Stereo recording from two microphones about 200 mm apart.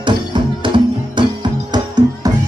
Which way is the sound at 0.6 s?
25° right (ahead or behind).